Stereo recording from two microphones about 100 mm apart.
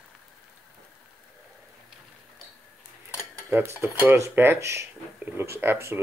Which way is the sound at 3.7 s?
15° right (ahead or behind).